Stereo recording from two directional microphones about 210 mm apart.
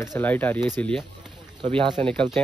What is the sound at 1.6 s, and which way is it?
Speech, 25° right (ahead or behind).